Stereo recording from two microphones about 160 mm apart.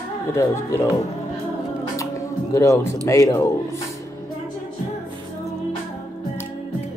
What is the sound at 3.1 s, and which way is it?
Speech, 20° left (ahead or behind).